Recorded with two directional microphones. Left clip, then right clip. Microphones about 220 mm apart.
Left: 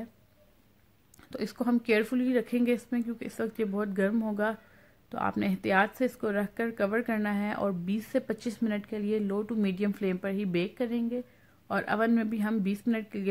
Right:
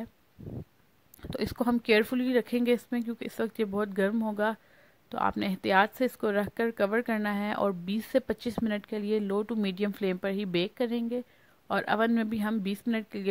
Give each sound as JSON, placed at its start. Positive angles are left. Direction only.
{"t": 1.3, "sound": "speech", "side_deg": -35}